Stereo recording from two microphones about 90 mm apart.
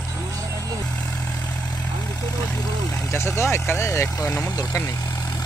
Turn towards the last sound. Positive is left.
turn(degrees=35)  # may be behind; listen again after turning